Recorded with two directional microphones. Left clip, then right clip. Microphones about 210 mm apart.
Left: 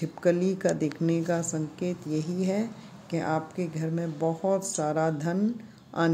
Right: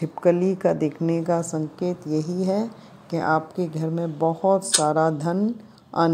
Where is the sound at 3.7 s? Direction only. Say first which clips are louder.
Right 6 dB; 20° right (ahead or behind).